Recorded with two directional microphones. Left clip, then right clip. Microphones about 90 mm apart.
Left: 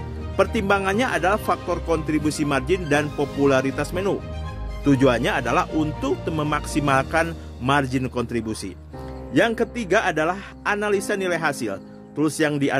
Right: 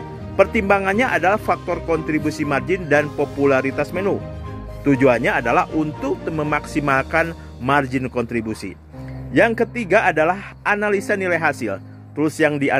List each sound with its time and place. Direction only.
0.4 s a man's voice: 15° left (ahead or behind); by 4.2 s 35° left (ahead or behind)
4.8 s a man's voice: 20° left (ahead or behind)